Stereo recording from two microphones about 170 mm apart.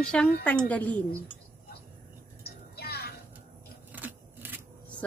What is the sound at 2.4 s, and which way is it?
Music, 70° left (ahead or behind).